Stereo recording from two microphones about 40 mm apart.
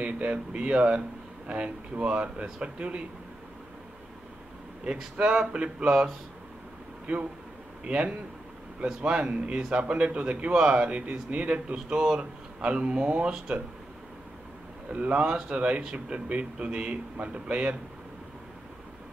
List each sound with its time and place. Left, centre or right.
0.0 s speech: right
5.1 s speech: right
5.9 s speech: centre
7.1 s a man's voice: right
14.9 s a man's voice: right